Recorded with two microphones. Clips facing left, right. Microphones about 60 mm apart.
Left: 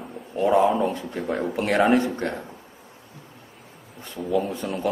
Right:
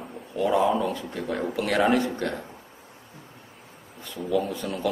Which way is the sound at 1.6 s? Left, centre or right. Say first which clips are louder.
Left 3 dB; left.